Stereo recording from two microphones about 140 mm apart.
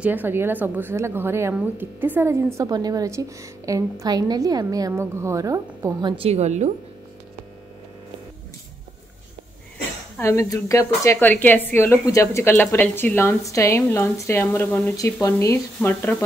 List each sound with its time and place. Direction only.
0.0 s a woman's voice: 15° right (ahead or behind)
5.9 s a woman's voice: 35° right (ahead or behind)
6.2 s a woman's voice: 50° right (ahead or behind)
10.1 s a woman's voice: 20° left (ahead or behind)